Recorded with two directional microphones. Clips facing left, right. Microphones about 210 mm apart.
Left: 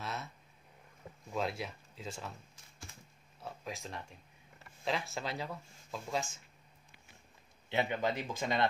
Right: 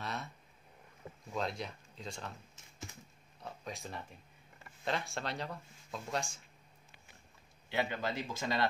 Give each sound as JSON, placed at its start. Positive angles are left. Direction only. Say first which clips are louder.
{"t": 0.0, "sound": "a sound", "louder": "even", "side_deg": 0}
{"t": 1.3, "sound": "speech", "louder": "left 1 dB", "side_deg": 5}
{"t": 3.3, "sound": "speech", "louder": "left 1 dB", "side_deg": 5}
{"t": 7.7, "sound": "speech", "louder": "left 2 dB", "side_deg": 20}